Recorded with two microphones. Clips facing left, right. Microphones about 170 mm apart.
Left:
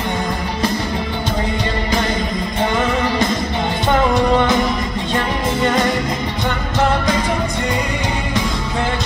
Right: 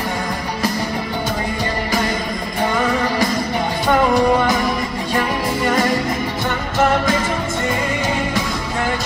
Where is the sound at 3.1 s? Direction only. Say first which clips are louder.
Even; 20° left (ahead or behind).